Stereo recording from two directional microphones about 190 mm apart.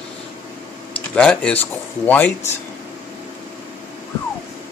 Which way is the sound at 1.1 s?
5° left (ahead or behind).